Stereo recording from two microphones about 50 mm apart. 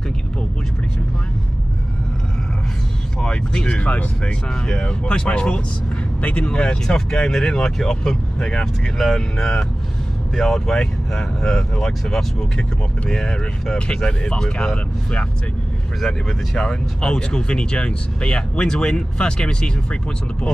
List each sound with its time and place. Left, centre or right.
3.2 s speech: centre
4.5 s speech: centre
5.0 s speech: left
6.6 s speech: centre
16.0 s speech: centre